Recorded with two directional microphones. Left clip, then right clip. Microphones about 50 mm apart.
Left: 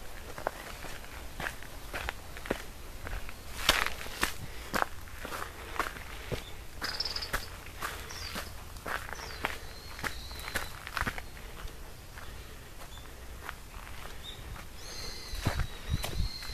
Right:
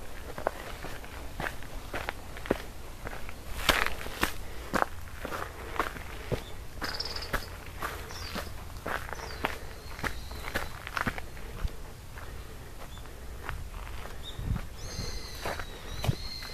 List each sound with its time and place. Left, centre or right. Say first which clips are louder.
0.4 s walk: right 3 dB; left
3.5 s walk: right 1 dB; centre
5.3 s walk: right 2 dB; left
6.8 s cricket: even; centre
7.2 s walk: right 2 dB; centre
14.9 s horse: right 1 dB; right
15.4 s walk: right 2 dB; left